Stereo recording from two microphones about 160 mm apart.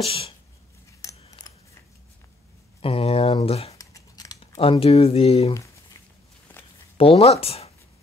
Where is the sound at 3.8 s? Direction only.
20° left (ahead or behind).